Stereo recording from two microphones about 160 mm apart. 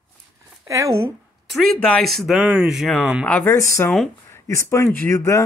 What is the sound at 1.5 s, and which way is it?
Speech, centre (ahead or behind).